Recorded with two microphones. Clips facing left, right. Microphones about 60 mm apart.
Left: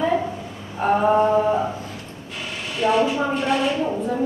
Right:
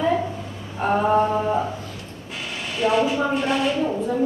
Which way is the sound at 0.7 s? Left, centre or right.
Centre.